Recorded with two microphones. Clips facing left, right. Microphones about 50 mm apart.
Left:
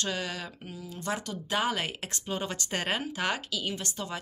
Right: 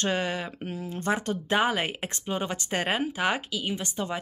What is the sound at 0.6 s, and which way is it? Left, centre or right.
Speech, right.